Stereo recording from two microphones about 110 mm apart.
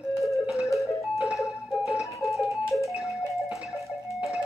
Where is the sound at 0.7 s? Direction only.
Centre (ahead or behind).